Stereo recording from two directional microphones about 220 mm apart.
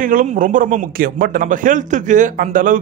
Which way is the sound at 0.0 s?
35° right (ahead or behind).